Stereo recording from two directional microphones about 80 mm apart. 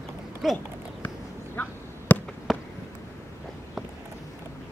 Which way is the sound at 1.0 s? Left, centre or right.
Left.